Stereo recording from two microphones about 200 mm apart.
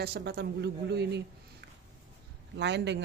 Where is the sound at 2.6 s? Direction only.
60° right (ahead or behind).